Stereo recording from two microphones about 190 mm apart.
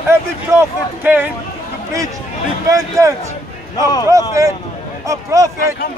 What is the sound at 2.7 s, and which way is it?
Speech, 15° right (ahead or behind).